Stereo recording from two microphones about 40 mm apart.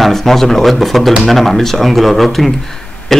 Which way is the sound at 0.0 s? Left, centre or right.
Centre.